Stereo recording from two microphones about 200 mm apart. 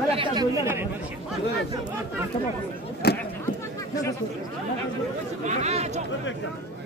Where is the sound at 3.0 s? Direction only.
55° left (ahead or behind).